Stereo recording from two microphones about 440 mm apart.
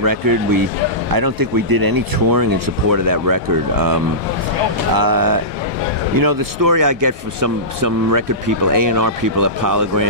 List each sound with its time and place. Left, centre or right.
0.0 s speech: right